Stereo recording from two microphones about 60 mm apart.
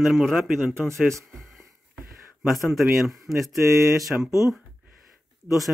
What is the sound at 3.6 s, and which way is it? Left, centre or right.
Speech, right.